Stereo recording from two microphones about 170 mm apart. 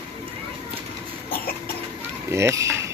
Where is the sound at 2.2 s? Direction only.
15° right (ahead or behind).